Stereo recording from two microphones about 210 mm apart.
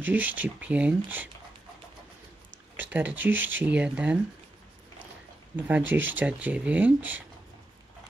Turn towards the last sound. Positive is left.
turn(degrees=-10)  # may be behind; listen again after turning